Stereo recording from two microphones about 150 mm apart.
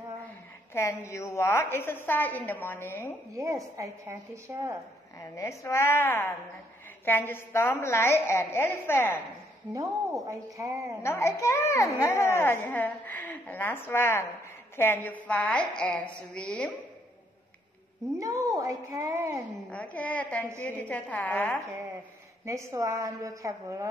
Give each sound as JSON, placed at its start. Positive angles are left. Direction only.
{"t": 0.7, "sound": "a woman's voice", "side_deg": 20}
{"t": 3.3, "sound": "a woman's voice", "side_deg": -20}
{"t": 5.2, "sound": "a woman's voice", "side_deg": 15}
{"t": 9.7, "sound": "a woman's voice", "side_deg": -20}
{"t": 11.0, "sound": "a child's voice", "side_deg": 20}
{"t": 18.1, "sound": "a woman's voice", "side_deg": -20}
{"t": 19.7, "sound": "a woman's voice", "side_deg": 10}
{"t": 22.4, "sound": "a woman's voice", "side_deg": -20}